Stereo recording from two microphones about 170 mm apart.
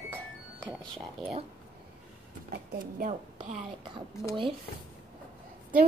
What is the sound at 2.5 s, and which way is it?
Speech, 55° right (ahead or behind).